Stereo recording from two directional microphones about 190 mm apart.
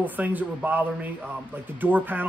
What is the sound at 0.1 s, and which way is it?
Speech, 10° right (ahead or behind).